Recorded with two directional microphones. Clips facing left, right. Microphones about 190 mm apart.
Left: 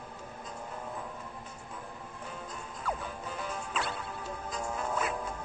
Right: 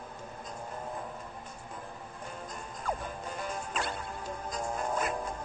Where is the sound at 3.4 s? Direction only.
45° right (ahead or behind).